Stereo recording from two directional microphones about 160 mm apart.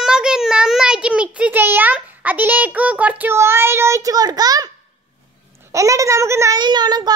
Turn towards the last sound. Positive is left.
turn(degrees=-25)  # may be behind; listen again after turning